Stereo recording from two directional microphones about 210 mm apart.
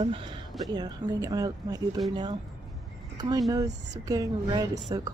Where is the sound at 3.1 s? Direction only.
20° right (ahead or behind).